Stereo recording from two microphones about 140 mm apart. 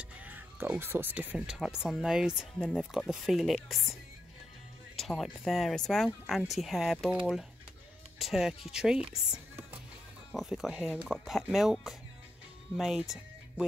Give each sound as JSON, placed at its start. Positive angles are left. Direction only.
{"t": 0.0, "sound": "speech", "side_deg": -10}
{"t": 4.9, "sound": "speech", "side_deg": 0}
{"t": 8.2, "sound": "speech", "side_deg": 0}